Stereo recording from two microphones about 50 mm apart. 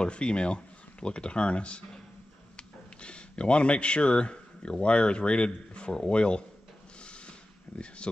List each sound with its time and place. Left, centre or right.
0.0 s speech: centre
7.0 s a sound: left
7.7 s speech: centre